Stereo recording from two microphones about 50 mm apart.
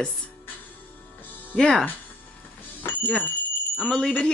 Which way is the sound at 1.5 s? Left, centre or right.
Centre.